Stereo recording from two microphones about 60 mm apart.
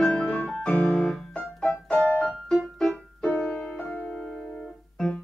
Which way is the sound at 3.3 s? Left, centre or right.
Left.